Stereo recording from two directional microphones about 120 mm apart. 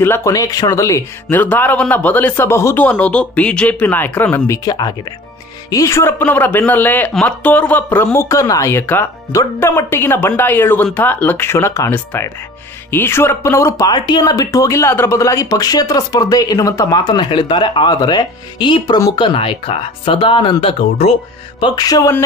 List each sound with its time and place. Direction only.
0.0 s speech: 25° left (ahead or behind)
1.4 s a man's voice: 15° left (ahead or behind)
4.6 s a man's voice: 35° left (ahead or behind); by 21.1 s 50° left (ahead or behind)
21.5 s speech: 35° left (ahead or behind)